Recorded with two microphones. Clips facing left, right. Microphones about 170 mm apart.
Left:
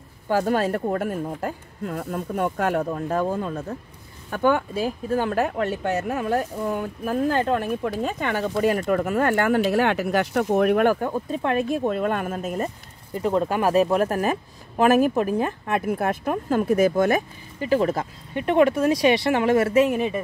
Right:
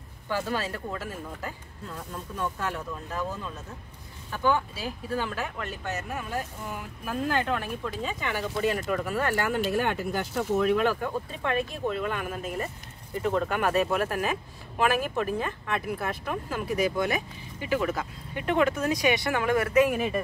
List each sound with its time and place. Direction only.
0.3 s speech: 50° left (ahead or behind)
1.4 s speech: 70° left (ahead or behind)
7.2 s speech: 35° left (ahead or behind)
7.8 s speech: 60° left (ahead or behind); by 12.6 s 45° left (ahead or behind)
13.2 s speech: 30° left (ahead or behind)
18.3 s speech: 20° left (ahead or behind)